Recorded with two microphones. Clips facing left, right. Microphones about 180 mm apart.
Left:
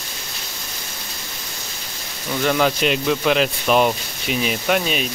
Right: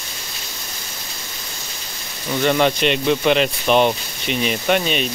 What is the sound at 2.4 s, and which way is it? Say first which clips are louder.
Speech: right 2 dB; centre (ahead or behind).